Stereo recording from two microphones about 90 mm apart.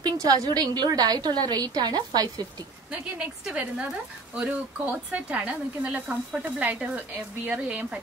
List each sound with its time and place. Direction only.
0.0 s a woman's voice: 45° right (ahead or behind)
2.9 s speech: 10° right (ahead or behind)